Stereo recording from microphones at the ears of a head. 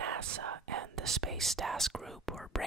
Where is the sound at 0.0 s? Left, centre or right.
Right.